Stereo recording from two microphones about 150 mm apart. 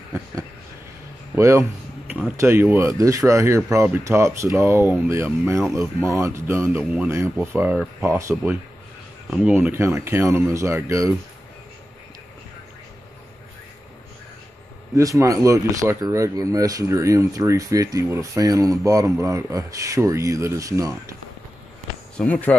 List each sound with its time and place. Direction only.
1.3 s a sound: 20° right (ahead or behind)
2.1 s speech: 10° right (ahead or behind)
6.8 s a man's voice: 5° right (ahead or behind); by 11.1 s 20° right (ahead or behind)
15.0 s speech: 20° right (ahead or behind)
22.1 s speech: 10° left (ahead or behind)